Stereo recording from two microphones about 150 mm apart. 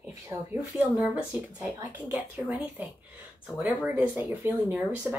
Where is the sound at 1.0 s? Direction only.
10° right (ahead or behind).